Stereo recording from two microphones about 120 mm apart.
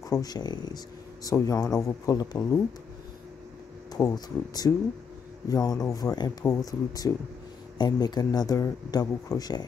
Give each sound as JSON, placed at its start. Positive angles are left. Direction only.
{"t": 0.1, "sound": "speech", "side_deg": 30}
{"t": 3.9, "sound": "speech", "side_deg": 35}